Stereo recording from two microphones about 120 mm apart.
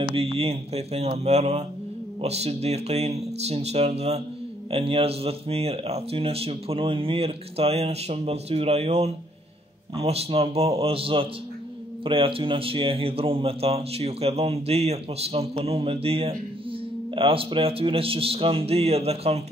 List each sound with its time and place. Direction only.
0.0 s speech: 50° right (ahead or behind)
4.6 s speech: 50° right (ahead or behind)